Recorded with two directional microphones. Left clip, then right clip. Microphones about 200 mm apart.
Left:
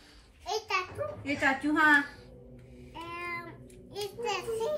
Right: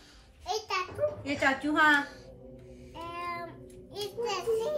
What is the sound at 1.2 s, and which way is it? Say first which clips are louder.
Speech: left 3 dB; 5° right (ahead or behind).